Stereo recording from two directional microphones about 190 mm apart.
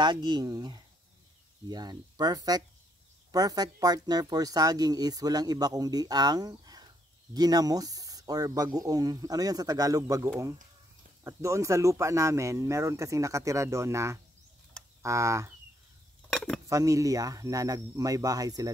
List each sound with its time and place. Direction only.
0.0 s speech: 25° right (ahead or behind)
16.3 s cutlery: centre (ahead or behind)
16.6 s speech: 15° right (ahead or behind)